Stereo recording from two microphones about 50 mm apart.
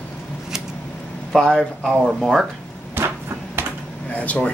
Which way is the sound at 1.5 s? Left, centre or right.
Centre.